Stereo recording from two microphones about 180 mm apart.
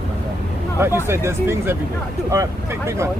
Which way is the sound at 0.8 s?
15° right (ahead or behind).